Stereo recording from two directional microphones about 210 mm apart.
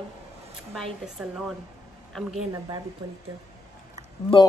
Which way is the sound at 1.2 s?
Centre (ahead or behind).